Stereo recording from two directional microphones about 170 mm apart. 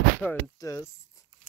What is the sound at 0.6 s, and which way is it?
Speech, 20° left (ahead or behind).